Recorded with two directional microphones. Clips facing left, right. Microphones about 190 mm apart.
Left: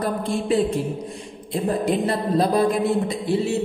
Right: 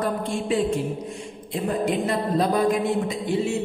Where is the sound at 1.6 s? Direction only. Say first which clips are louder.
Left 2 dB; 35° left (ahead or behind).